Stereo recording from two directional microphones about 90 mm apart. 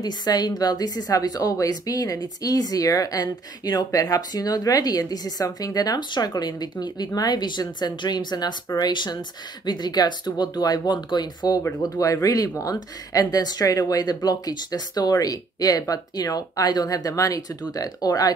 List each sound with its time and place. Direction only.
0.0 s a woman's voice: 50° left (ahead or behind)
11.8 s a woman's voice: 40° left (ahead or behind)